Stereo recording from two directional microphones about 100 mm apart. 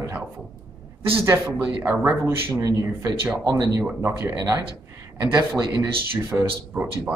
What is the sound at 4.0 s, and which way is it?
Speech, 25° right (ahead or behind).